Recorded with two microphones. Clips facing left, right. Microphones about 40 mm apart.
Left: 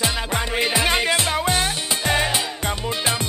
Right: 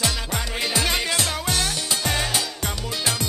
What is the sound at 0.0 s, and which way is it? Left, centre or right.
Music, left.